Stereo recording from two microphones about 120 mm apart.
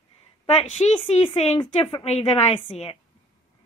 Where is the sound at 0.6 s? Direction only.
70° left (ahead or behind).